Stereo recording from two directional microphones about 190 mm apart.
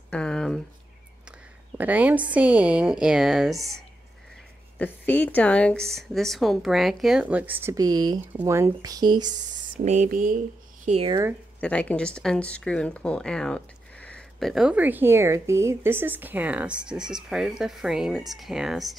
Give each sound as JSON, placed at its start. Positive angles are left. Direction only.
{"t": 0.1, "sound": "a sound", "side_deg": 5}
{"t": 1.8, "sound": "a woman's voice", "side_deg": -10}
{"t": 4.7, "sound": "speech", "side_deg": 10}
{"t": 7.6, "sound": "speech", "side_deg": -20}
{"t": 9.8, "sound": "speech", "side_deg": -45}
{"t": 10.9, "sound": "speech", "side_deg": -30}
{"t": 11.6, "sound": "speech", "side_deg": 5}